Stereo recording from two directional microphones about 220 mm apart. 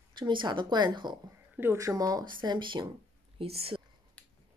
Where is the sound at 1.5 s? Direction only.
10° right (ahead or behind); by 3.8 s 25° right (ahead or behind).